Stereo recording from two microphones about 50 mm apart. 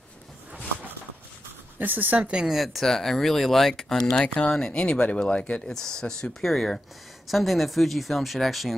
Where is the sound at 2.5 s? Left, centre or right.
Centre.